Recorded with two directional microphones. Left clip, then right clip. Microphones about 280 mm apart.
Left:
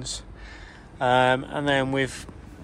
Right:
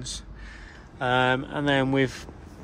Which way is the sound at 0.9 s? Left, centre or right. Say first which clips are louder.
Left 3 dB; centre.